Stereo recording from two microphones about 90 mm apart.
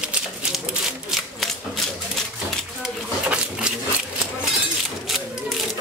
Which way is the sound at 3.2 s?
10° right (ahead or behind).